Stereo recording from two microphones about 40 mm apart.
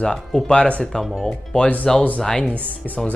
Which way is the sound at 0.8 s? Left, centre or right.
Centre.